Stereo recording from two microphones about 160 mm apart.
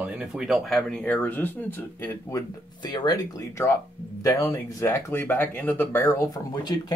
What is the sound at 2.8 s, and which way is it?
Speech, 25° left (ahead or behind).